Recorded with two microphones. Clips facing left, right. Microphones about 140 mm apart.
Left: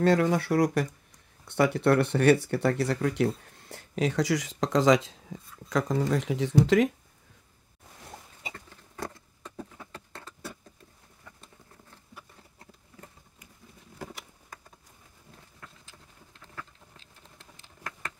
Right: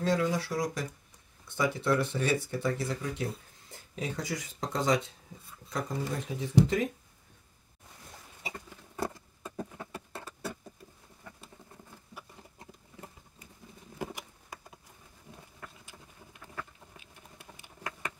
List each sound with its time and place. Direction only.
0.0 s speech: 65° left (ahead or behind); by 6.9 s 90° left
8.5 s vehicle: 10° right (ahead or behind)
12.2 s a sound: 15° right (ahead or behind)
16.9 s typing: 10° right (ahead or behind)